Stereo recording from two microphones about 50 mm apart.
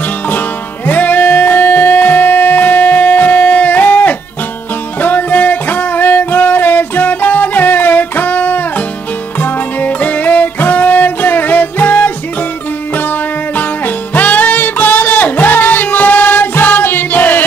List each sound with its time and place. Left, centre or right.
0.8 s music: left
13.6 s music: left